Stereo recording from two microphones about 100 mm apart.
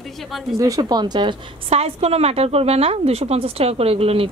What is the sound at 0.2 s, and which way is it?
Speech, centre (ahead or behind).